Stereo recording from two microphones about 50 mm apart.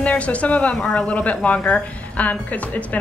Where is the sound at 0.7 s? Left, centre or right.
Centre.